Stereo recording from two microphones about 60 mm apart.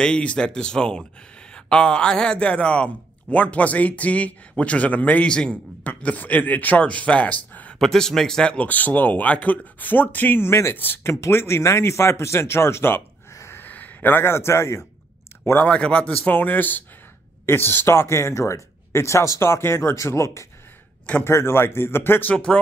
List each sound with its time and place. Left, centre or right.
0.0 s a man's voice: centre
5.3 s speech: centre
5.9 s a man's voice: left
7.8 s speech: centre
8.5 s a man's voice: left
10.5 s speech: left
10.8 s speech: left
11.1 s speech: left
13.3 s a sound: left
13.6 s speech: left
15.6 s a man's voice: left
22.3 s a man's voice: centre